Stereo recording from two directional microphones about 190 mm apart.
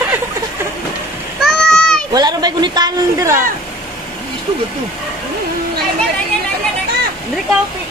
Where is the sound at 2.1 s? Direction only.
20° right (ahead or behind).